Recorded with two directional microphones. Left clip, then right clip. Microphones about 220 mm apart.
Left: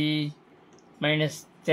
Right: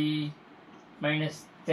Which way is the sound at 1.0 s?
50° left (ahead or behind).